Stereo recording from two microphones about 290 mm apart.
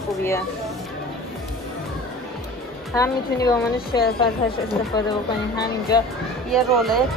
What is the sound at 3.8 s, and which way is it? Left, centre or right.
Speech, left.